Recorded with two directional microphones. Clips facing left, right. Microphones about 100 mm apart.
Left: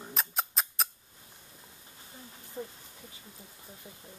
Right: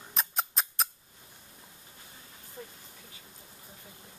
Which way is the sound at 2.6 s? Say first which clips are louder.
Left 6 dB; 20° left (ahead or behind).